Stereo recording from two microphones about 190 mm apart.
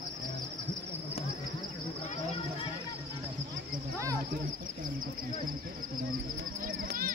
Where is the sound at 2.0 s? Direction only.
30° left (ahead or behind).